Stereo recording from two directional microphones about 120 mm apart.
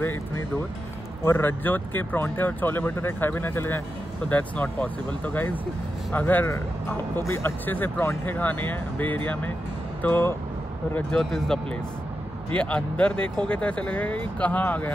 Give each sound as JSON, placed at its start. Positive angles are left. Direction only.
{"t": 1.2, "sound": "speech", "side_deg": 15}